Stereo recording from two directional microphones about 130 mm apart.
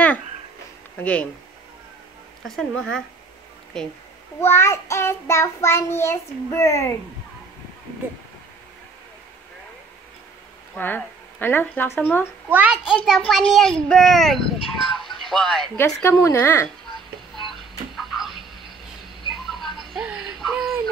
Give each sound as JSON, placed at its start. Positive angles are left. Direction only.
{"t": 0.9, "sound": "speech", "side_deg": 10}
{"t": 2.4, "sound": "a child's voice", "side_deg": 0}
{"t": 4.4, "sound": "child singing", "side_deg": 20}
{"t": 10.8, "sound": "speech", "side_deg": 15}
{"t": 12.4, "sound": "a child's voice", "side_deg": -15}
{"t": 15.8, "sound": "child singing", "side_deg": 20}
{"t": 17.4, "sound": "a sound", "side_deg": 0}
{"t": 19.4, "sound": "a sound", "side_deg": 0}